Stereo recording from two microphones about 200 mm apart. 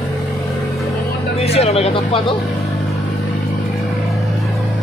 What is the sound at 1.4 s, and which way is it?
Speech, 30° left (ahead or behind).